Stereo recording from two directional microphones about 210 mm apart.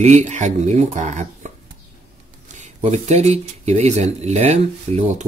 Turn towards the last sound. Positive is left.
turn(degrees=-30)  # may be behind; listen again after turning